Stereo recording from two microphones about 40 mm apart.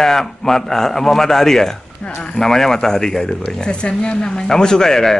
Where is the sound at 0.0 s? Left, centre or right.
Centre.